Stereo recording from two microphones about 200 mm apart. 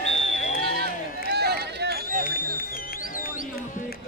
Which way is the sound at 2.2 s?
45° left (ahead or behind).